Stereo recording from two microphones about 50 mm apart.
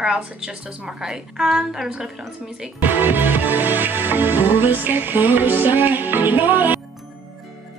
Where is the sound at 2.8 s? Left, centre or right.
Right.